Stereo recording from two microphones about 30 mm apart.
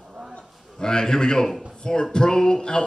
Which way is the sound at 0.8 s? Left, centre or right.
Left.